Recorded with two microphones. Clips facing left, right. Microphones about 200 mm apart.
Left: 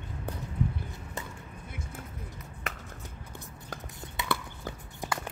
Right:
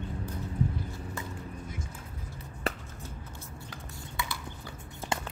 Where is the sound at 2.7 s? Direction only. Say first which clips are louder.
Right 7 dB; 35° right (ahead or behind).